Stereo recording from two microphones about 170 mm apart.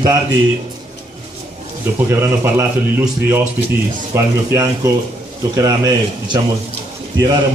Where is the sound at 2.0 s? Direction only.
15° right (ahead or behind).